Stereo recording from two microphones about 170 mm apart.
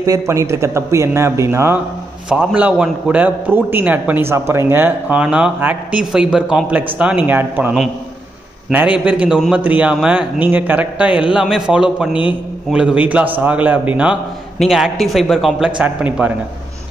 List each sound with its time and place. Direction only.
0.0 s a man's voice: 20° right (ahead or behind)
12.1 s a man's voice: 30° left (ahead or behind)
12.7 s a man's voice: 5° right (ahead or behind)